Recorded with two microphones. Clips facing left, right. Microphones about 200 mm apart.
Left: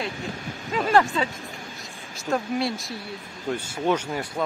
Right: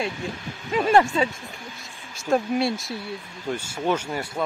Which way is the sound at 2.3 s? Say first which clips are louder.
Right 3 dB; 25° right (ahead or behind).